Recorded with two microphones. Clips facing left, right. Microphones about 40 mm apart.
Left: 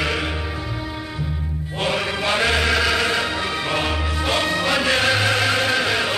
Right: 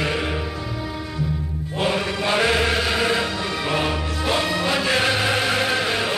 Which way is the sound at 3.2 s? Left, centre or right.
Centre.